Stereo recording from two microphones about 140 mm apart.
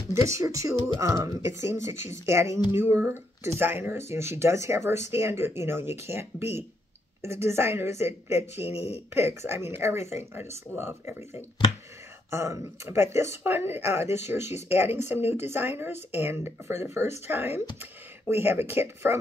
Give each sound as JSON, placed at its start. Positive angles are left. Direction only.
{"t": 0.1, "sound": "speech", "side_deg": -20}
{"t": 8.5, "sound": "speech", "side_deg": 45}
{"t": 9.1, "sound": "speech", "side_deg": -20}
{"t": 9.9, "sound": "speech", "side_deg": 50}
{"t": 10.8, "sound": "speech", "side_deg": -20}
{"t": 12.3, "sound": "speech", "side_deg": -20}